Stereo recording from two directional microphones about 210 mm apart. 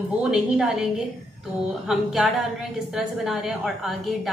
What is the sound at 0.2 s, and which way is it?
A woman's voice, 5° right (ahead or behind).